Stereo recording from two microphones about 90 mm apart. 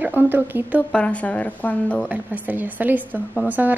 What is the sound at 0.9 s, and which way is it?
Speech, 15° left (ahead or behind).